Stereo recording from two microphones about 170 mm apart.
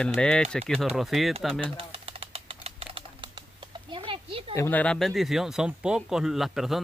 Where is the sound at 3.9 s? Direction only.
30° right (ahead or behind).